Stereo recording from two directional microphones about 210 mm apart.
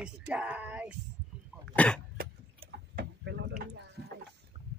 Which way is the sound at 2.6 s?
50° right (ahead or behind).